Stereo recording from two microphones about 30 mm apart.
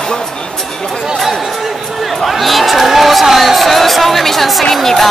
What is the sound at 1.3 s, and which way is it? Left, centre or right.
Speech, centre.